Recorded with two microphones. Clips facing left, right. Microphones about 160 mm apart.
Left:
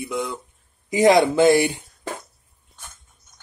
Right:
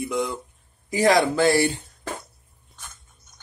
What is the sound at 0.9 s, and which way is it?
Speech, 20° left (ahead or behind).